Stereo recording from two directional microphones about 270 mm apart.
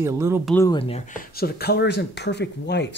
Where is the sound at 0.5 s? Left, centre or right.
Centre.